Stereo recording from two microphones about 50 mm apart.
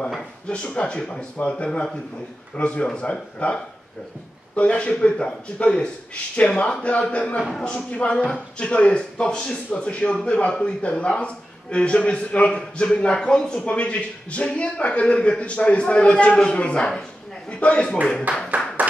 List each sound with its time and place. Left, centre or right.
0.5 s a man's voice: left
4.6 s a man's voice: left
18.3 s speech: right
18.8 s clapping: right